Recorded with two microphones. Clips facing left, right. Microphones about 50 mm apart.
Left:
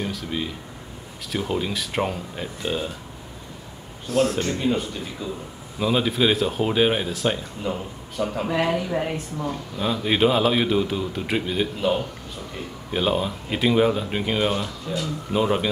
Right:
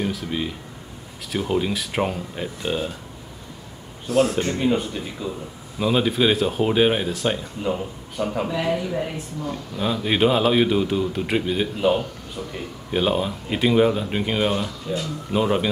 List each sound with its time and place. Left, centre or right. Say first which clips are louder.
0.0 s speech: right 2 dB; centre
4.1 s speech: right 2 dB; centre
4.4 s speech: right 2 dB; centre
8.6 s speech: even; left
9.5 s speech: right 2 dB; centre